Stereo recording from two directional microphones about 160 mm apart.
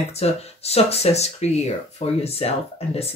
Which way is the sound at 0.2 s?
40° left (ahead or behind).